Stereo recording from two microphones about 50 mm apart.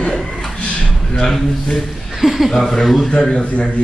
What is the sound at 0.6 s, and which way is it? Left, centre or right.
Speech, centre.